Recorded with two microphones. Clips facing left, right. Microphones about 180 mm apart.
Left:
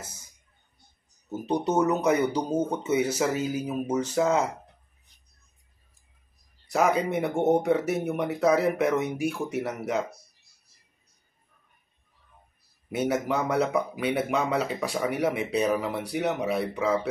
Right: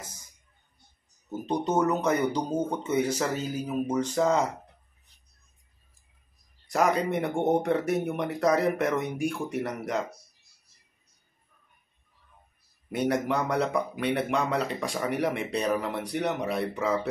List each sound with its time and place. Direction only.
1.8 s speech: 10° left (ahead or behind)
6.7 s speech: centre (ahead or behind)
12.9 s speech: 5° left (ahead or behind)